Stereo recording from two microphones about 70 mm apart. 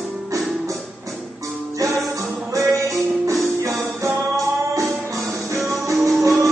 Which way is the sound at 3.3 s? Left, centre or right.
Right.